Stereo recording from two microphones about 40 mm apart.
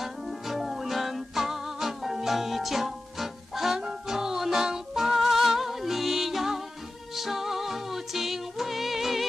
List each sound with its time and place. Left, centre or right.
0.0 s music: centre